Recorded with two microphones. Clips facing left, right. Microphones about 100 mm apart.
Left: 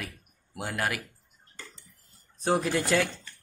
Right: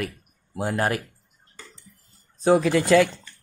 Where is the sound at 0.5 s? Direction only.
30° right (ahead or behind).